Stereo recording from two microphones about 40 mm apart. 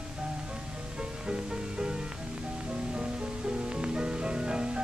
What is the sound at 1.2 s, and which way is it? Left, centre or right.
Music, right.